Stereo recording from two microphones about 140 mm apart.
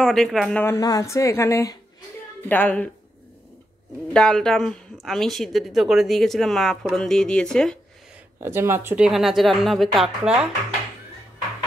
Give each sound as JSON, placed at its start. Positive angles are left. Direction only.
{"t": 0.0, "sound": "speech", "side_deg": 5}
{"t": 0.6, "sound": "a woman's voice", "side_deg": 20}
{"t": 4.1, "sound": "speech", "side_deg": 5}
{"t": 8.4, "sound": "speech", "side_deg": -15}
{"t": 9.0, "sound": "speech", "side_deg": 0}